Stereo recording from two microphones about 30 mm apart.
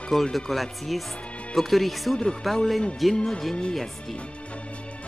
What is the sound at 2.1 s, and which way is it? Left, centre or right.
Speech, left.